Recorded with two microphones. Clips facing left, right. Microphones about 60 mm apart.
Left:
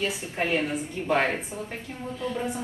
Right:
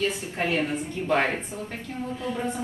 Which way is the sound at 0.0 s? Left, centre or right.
Centre.